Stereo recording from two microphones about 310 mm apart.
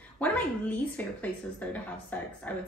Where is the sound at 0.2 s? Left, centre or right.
Centre.